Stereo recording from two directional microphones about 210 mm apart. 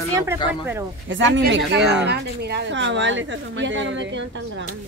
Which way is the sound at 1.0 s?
60° right (ahead or behind).